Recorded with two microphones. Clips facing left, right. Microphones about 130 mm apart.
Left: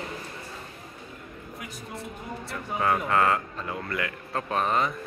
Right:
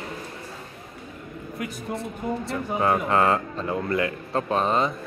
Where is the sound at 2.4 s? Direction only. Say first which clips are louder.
Right 2 dB; 25° right (ahead or behind).